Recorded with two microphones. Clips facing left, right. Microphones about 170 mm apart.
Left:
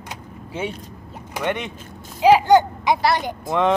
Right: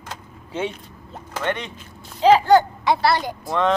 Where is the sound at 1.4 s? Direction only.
15° left (ahead or behind).